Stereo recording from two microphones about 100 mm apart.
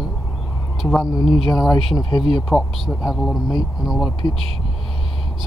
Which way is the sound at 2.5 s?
5° left (ahead or behind).